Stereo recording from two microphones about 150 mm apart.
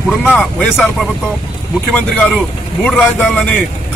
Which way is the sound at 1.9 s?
10° left (ahead or behind).